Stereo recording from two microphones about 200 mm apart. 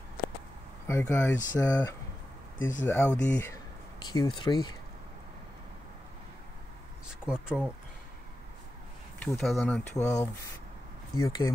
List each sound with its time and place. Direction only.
0.8 s speech: 10° left (ahead or behind)
7.2 s speech: 5° right (ahead or behind)
9.2 s speech: 5° left (ahead or behind)
10.0 s speech: 15° left (ahead or behind)